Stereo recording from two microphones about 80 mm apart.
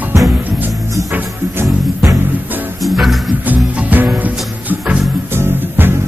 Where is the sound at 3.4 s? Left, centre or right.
Right.